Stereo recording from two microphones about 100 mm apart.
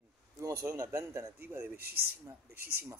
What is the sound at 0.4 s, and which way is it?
Speech, 25° right (ahead or behind).